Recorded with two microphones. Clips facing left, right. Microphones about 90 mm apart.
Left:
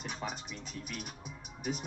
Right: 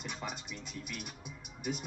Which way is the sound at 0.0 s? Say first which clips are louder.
Left 2 dB; 40° left (ahead or behind).